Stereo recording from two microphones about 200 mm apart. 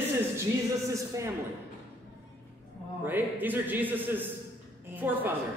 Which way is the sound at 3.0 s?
10° right (ahead or behind).